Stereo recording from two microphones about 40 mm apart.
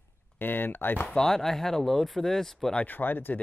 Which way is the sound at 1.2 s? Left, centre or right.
Centre.